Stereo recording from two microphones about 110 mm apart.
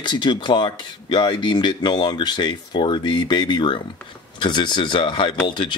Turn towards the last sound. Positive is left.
turn(degrees=45)  # may be behind; listen again after turning